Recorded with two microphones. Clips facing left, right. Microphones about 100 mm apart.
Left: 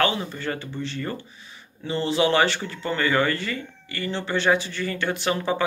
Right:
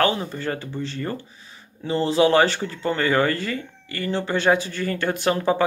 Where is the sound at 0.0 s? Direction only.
40° right (ahead or behind).